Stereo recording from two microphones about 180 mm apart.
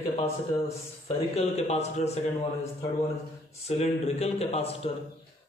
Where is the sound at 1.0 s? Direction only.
35° left (ahead or behind).